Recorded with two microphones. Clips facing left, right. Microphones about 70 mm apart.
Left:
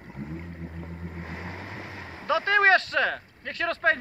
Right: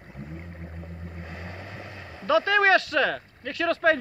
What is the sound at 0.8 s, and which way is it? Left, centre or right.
Vehicle, left.